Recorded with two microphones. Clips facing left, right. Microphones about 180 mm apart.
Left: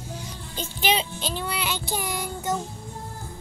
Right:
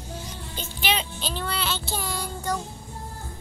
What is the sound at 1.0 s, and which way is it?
Child singing, 20° left (ahead or behind).